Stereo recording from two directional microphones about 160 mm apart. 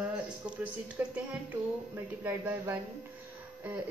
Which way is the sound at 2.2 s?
10° right (ahead or behind).